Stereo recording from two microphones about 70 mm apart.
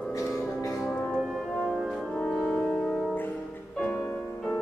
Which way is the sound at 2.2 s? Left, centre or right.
Centre.